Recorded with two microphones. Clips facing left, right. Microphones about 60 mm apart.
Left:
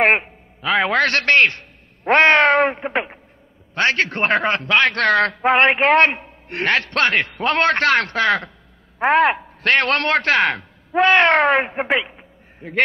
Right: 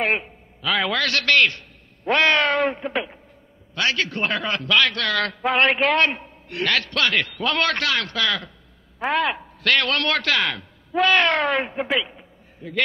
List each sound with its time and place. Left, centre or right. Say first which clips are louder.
0.0 s a man's voice: left 7 dB; left